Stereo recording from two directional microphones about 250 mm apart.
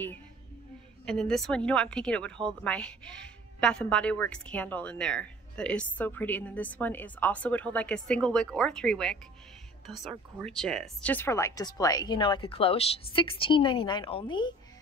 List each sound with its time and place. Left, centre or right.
1.0 s a woman's voice: centre